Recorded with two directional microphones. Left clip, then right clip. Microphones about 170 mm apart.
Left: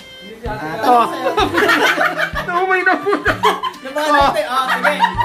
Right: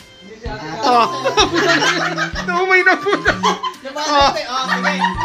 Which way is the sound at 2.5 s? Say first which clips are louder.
Right 3 dB; 20° right (ahead or behind).